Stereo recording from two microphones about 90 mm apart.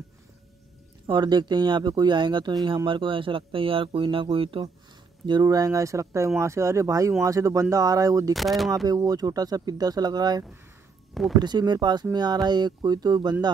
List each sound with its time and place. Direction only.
1.0 s speech: 55° right (ahead or behind); by 4.6 s 85° right
5.4 s speech: 40° right (ahead or behind)
8.3 s speech: centre (ahead or behind)
8.8 s speech: 45° right (ahead or behind)